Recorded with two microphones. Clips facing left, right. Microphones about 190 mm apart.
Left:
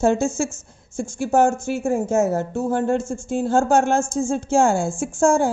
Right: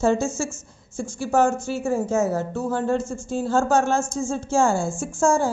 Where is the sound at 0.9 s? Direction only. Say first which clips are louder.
Left 2 dB; 50° left (ahead or behind).